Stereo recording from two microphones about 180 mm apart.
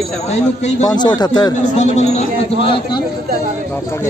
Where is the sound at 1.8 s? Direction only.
40° left (ahead or behind).